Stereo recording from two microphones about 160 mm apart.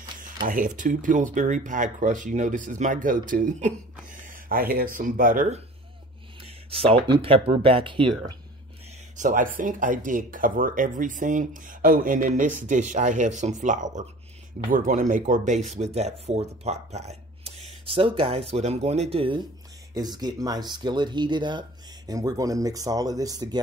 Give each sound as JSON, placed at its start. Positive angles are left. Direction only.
{"t": 0.5, "sound": "speech", "side_deg": -55}
{"t": 6.4, "sound": "speech", "side_deg": -35}
{"t": 9.1, "sound": "speech", "side_deg": -55}
{"t": 19.9, "sound": "speech", "side_deg": -25}